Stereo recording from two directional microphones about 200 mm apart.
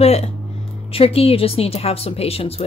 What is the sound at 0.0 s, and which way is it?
A woman's voice, 30° left (ahead or behind).